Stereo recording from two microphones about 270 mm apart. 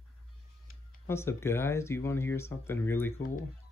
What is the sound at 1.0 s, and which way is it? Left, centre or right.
Speech, centre.